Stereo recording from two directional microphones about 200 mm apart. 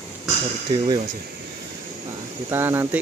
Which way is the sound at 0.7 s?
20° right (ahead or behind).